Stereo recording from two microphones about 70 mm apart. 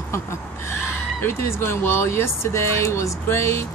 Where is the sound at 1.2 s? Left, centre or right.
Left.